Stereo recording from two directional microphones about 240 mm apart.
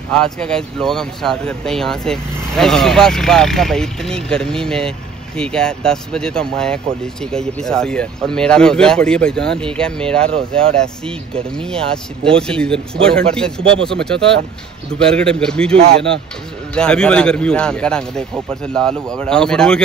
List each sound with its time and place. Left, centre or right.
0.1 s speech: centre